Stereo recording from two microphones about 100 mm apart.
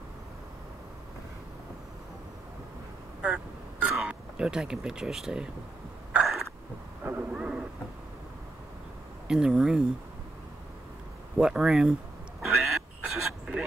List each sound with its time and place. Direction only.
3.9 s speech: 10° right (ahead or behind)
6.1 s a sound: centre (ahead or behind)
7.1 s a sound: 20° right (ahead or behind)
7.3 s vehicle: 5° right (ahead or behind)
9.3 s speech: 5° right (ahead or behind)
11.3 s speech: 5° right (ahead or behind)
12.4 s quack: centre (ahead or behind)